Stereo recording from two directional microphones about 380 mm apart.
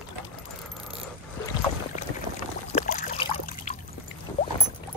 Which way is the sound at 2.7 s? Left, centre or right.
Centre.